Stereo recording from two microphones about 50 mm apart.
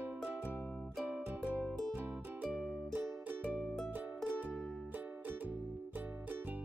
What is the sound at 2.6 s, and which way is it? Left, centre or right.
Music, centre.